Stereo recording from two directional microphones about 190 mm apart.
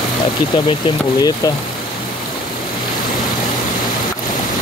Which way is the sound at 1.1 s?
20° left (ahead or behind).